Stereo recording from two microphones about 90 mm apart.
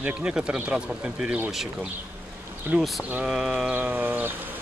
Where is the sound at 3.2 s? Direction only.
10° right (ahead or behind).